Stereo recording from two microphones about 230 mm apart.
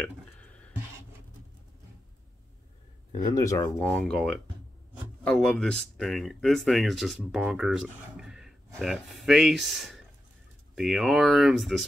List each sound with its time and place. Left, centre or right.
0.0 s a sound: centre
3.1 s speech: centre
3.7 s speech: centre